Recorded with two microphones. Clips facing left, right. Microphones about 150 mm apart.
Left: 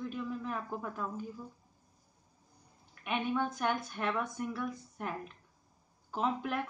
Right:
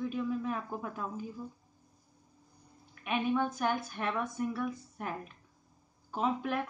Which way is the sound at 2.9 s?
Centre (ahead or behind).